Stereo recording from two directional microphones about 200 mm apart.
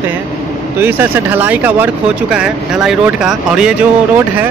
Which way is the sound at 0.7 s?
10° right (ahead or behind).